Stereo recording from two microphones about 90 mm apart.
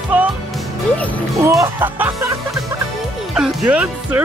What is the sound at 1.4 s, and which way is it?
Speech, 30° right (ahead or behind).